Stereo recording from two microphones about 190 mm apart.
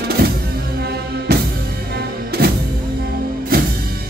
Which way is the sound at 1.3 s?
55° right (ahead or behind).